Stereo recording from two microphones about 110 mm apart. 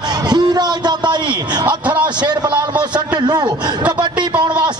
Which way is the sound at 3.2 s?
40° right (ahead or behind).